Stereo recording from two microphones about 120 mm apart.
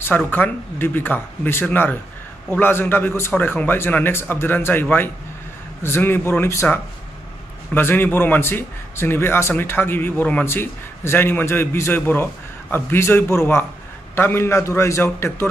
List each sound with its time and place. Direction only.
0.3 s a man's voice: 15° left (ahead or behind)